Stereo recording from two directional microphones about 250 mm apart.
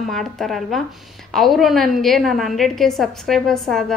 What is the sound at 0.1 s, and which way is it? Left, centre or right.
A woman's voice, centre.